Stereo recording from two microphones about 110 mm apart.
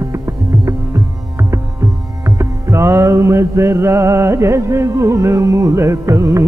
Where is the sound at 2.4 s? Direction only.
25° right (ahead or behind).